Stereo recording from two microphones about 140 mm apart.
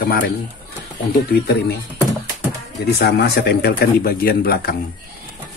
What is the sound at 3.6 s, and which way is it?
Speech, 90° left.